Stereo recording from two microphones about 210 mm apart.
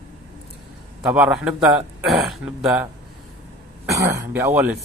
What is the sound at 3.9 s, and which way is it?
Speech, 15° right (ahead or behind).